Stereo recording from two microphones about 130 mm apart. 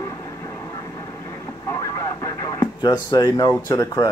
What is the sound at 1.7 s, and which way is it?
Speech, 30° left (ahead or behind).